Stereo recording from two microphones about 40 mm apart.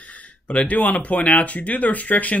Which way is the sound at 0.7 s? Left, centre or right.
Left.